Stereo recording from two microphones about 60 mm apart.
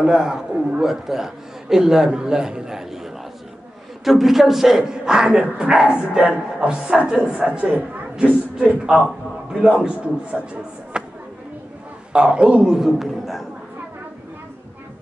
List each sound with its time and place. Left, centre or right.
0.0 s a man's voice: centre
12.1 s a man's voice: centre